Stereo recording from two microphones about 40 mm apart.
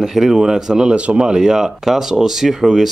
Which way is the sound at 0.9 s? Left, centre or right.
Right.